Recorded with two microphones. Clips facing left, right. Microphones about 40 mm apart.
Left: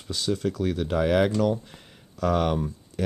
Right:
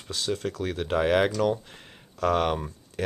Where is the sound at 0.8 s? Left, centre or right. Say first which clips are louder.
Even; centre.